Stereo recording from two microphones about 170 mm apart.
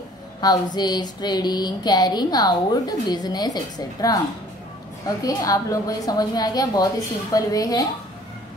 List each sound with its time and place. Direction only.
0.4 s speech: 25° left (ahead or behind)